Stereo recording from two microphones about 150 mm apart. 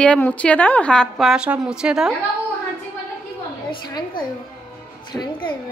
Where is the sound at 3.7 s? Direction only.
30° left (ahead or behind).